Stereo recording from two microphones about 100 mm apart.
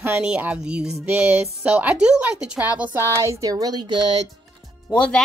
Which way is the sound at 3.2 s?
35° right (ahead or behind).